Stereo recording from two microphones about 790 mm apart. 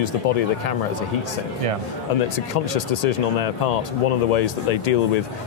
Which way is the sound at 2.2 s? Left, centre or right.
Left.